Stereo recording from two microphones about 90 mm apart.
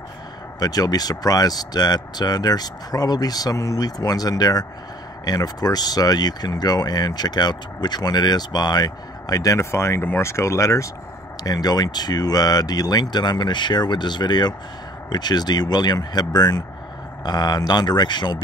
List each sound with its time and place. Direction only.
0.6 s speech: 45° left (ahead or behind)
11.4 s speech: 45° left (ahead or behind)